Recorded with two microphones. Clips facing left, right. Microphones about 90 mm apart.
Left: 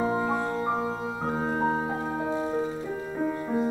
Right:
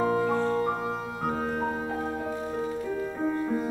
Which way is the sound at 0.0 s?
20° left (ahead or behind).